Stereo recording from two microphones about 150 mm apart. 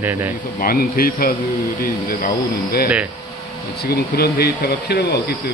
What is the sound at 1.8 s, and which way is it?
Speech, 65° left (ahead or behind).